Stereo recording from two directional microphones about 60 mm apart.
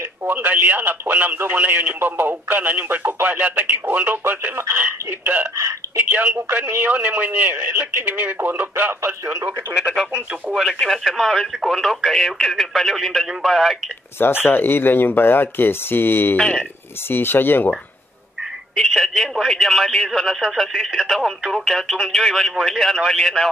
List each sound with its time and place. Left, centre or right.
0.2 s speech: right
8.4 s a sound: right
10.5 s speech: centre
14.1 s speech: left
18.9 s speech: centre